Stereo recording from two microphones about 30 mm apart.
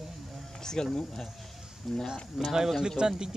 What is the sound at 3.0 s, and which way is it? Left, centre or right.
Speech, right.